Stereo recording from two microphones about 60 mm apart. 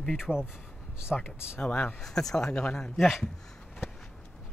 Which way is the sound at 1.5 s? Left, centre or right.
Left.